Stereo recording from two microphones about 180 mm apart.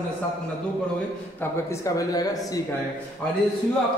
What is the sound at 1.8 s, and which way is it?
Speech, 20° left (ahead or behind).